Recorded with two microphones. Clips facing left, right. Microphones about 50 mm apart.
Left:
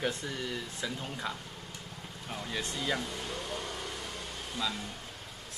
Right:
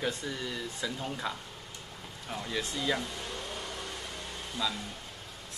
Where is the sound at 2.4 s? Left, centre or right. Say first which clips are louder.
Right 2 dB; centre.